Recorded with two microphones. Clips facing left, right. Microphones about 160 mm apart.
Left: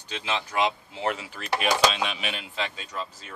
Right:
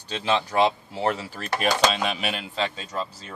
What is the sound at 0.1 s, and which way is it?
Speech, 35° right (ahead or behind).